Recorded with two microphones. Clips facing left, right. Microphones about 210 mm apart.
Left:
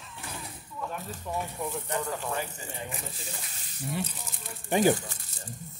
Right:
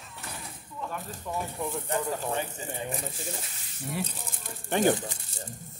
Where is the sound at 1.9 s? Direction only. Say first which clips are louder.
Right 4 dB; 30° right (ahead or behind).